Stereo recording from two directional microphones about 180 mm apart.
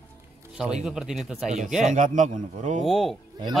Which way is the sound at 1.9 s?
45° right (ahead or behind).